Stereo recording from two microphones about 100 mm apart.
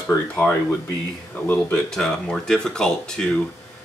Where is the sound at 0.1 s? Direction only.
35° left (ahead or behind).